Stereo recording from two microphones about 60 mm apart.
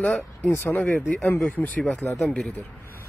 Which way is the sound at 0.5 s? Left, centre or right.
Left.